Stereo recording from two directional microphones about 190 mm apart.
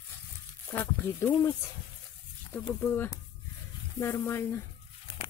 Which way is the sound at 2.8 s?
10° left (ahead or behind).